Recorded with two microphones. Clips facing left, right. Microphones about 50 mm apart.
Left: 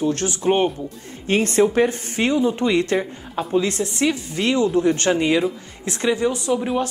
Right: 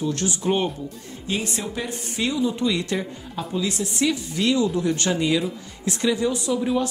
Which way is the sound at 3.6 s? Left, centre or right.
Left.